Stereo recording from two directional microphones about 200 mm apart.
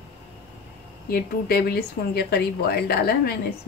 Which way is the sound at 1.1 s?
50° left (ahead or behind).